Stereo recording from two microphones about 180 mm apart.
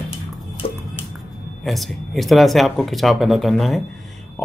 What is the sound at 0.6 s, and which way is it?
Music, 35° left (ahead or behind).